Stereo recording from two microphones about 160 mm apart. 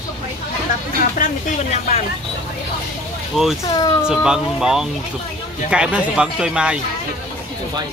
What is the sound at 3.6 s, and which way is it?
Speech, 25° left (ahead or behind).